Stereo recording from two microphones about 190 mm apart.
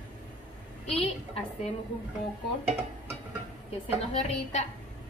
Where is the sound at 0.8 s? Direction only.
30° left (ahead or behind).